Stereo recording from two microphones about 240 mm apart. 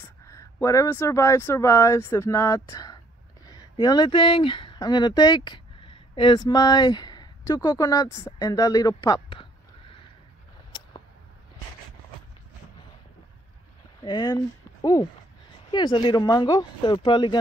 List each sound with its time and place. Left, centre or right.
0.3 s speech: centre
14.0 s speech: centre